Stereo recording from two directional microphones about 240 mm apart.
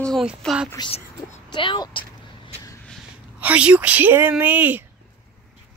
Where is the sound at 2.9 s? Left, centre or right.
Centre.